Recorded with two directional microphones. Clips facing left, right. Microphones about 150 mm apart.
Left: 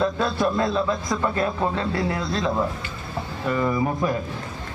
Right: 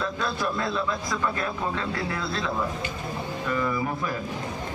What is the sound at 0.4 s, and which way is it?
A man's voice, 25° left (ahead or behind).